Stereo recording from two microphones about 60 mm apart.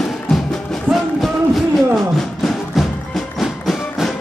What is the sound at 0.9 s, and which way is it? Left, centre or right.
Music, right.